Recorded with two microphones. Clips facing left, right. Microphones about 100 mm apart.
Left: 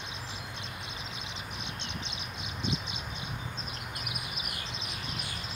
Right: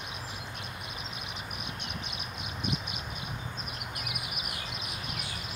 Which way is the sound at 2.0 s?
25° left (ahead or behind).